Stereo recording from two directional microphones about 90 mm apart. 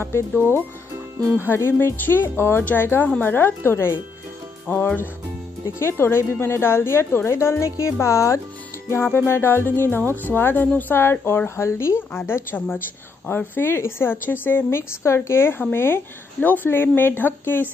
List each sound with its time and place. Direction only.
1.4 s a woman's voice: 25° left (ahead or behind)